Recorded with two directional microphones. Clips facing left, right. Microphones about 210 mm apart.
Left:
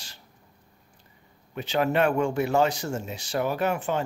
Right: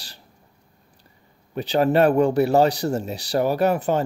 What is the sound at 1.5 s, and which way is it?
Speech, 35° right (ahead or behind).